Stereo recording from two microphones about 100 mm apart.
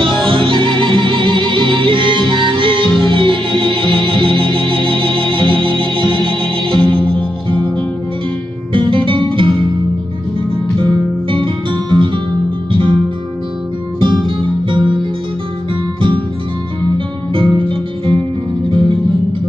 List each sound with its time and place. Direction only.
0.0 s music: 60° right (ahead or behind)
10.8 s music: 60° right (ahead or behind)
13.9 s music: 55° right (ahead or behind)
17.3 s music: 60° right (ahead or behind)